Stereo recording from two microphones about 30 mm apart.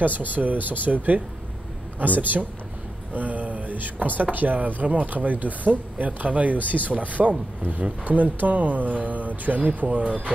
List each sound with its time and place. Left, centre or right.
0.0 s speech: right
3.2 s speech: right
9.8 s speech: right